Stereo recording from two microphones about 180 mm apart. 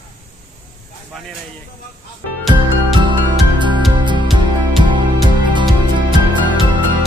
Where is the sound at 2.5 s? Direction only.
25° right (ahead or behind).